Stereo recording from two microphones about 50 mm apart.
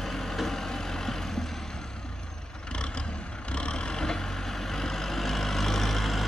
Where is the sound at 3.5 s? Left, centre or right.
Left.